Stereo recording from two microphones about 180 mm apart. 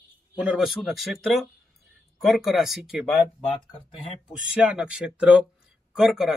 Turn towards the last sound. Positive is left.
turn(degrees=0)  # may be behind; listen again after turning